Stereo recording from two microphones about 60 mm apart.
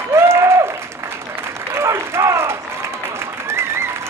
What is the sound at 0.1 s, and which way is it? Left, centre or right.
Applause, right.